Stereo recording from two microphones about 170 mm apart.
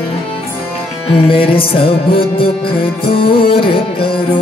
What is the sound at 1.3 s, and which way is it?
Music, 30° left (ahead or behind).